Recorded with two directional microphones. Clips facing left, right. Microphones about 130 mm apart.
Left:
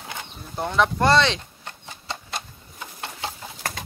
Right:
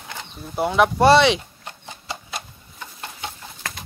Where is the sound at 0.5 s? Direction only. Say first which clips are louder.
Right 4 dB; 10° right (ahead or behind).